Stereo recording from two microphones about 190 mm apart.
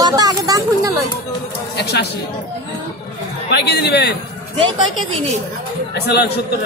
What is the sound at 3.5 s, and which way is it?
Speech, 60° left (ahead or behind).